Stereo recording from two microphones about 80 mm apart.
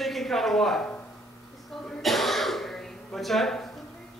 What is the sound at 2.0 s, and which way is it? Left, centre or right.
Throat clearing, centre.